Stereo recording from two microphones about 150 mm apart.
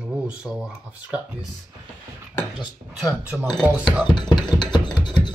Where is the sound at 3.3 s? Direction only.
10° right (ahead or behind).